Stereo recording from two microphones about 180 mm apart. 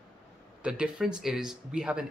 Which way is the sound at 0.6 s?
5° right (ahead or behind).